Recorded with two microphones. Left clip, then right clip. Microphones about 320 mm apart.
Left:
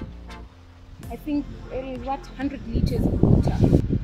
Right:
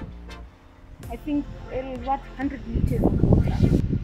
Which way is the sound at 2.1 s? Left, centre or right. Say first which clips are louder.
Right 3 dB; centre.